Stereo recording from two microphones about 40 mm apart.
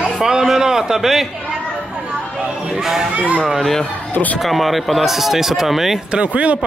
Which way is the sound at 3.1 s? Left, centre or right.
Right.